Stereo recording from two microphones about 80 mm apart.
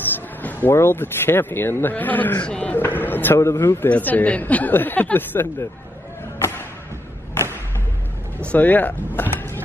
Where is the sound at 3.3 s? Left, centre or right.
Left.